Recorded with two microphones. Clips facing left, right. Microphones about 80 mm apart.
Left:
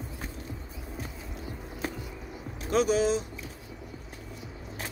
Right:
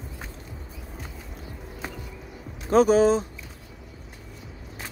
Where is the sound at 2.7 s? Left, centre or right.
Right.